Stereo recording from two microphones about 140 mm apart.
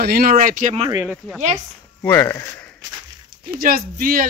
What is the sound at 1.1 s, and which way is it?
Speech, 5° right (ahead or behind).